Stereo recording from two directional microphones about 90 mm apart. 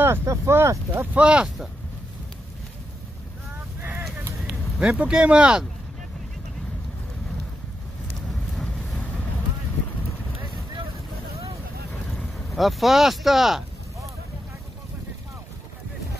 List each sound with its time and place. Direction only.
0.0 s speech: 30° right (ahead or behind)
0.9 s speech: 10° right (ahead or behind)
4.5 s speech: 10° right (ahead or behind)
8.3 s vehicle: centre (ahead or behind)
11.9 s boat: 5° left (ahead or behind)